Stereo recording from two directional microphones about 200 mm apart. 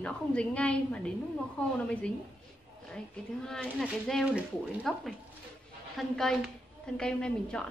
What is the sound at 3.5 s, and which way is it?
A woman's voice, centre (ahead or behind).